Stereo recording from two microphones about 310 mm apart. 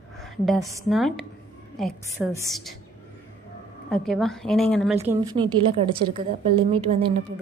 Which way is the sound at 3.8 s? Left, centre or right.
Centre.